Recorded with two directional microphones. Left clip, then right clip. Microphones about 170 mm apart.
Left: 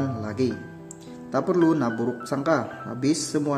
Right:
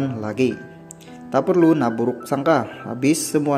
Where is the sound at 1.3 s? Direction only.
10° right (ahead or behind).